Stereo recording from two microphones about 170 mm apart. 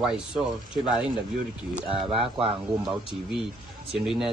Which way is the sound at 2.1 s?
35° right (ahead or behind).